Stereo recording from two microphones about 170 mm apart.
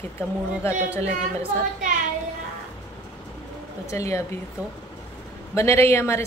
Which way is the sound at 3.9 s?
20° left (ahead or behind).